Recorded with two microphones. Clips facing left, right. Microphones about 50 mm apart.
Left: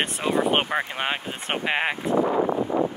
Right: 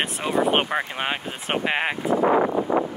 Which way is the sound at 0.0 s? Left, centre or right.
Centre.